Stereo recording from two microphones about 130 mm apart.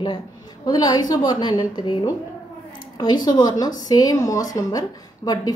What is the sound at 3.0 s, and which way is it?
A woman's voice, 30° left (ahead or behind).